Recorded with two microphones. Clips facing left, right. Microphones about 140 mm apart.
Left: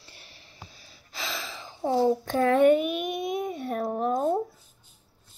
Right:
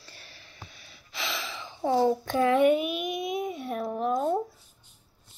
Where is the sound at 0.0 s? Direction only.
20° left (ahead or behind); by 2.0 s 40° left (ahead or behind).